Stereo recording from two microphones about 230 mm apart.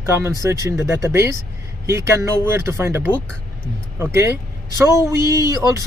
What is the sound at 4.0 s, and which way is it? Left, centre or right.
Speech, centre.